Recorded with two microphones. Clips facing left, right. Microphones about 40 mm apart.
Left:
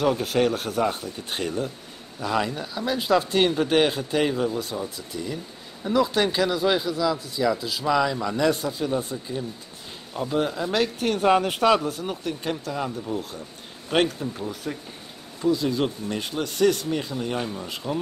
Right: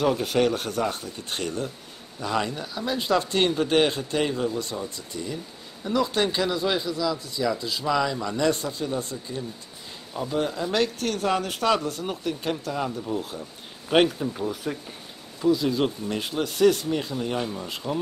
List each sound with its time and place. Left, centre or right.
0.0 s a man's voice: centre
11.0 s speech: centre
11.6 s a man's voice: centre